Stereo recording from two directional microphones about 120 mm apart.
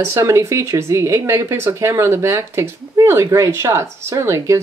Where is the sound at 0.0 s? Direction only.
20° right (ahead or behind).